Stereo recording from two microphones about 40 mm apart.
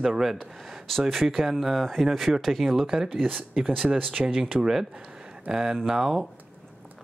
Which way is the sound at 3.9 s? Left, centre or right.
Right.